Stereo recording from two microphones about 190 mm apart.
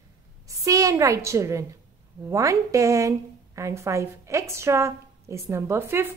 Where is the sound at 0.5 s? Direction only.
15° right (ahead or behind).